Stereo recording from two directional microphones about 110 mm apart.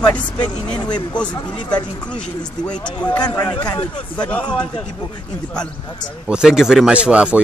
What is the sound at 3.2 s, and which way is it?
Speech, 40° left (ahead or behind).